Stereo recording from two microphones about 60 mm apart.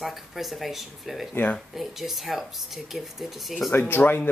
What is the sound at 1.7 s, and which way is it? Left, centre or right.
Speech, centre.